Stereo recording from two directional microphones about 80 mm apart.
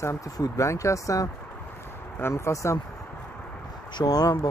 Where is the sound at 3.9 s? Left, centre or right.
Left.